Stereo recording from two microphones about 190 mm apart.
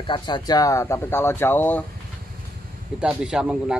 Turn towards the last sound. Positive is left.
turn(degrees=-5)  # may be behind; listen again after turning